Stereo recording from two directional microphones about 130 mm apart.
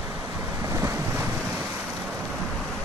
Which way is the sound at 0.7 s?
20° right (ahead or behind).